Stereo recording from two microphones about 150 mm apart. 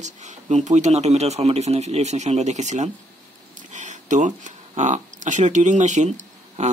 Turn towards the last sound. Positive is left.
turn(degrees=-50)  # may be behind; listen again after turning